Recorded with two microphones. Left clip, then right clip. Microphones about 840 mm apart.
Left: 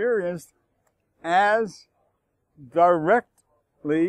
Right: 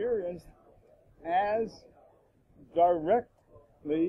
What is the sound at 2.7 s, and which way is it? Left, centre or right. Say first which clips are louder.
Speech: left 7 dB; left.